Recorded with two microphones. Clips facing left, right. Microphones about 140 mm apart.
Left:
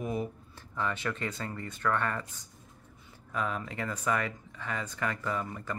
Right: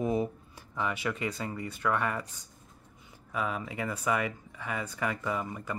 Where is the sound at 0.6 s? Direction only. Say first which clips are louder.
Right 1 dB; 10° right (ahead or behind).